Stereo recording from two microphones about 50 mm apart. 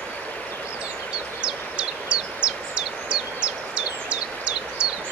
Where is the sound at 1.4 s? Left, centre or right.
Centre.